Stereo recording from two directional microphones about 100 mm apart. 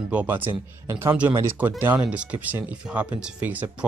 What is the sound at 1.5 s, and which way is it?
Speech, 20° right (ahead or behind).